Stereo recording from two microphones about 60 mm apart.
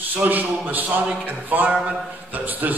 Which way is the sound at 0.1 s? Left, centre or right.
Right.